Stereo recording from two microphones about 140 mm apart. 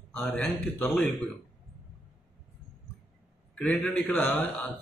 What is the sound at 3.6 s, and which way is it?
A man's voice, 5° left (ahead or behind).